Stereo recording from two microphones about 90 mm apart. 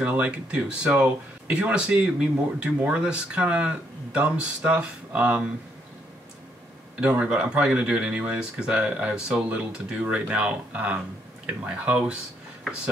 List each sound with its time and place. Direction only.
0.0 s speech: 15° right (ahead or behind)
7.0 s speech: 15° right (ahead or behind)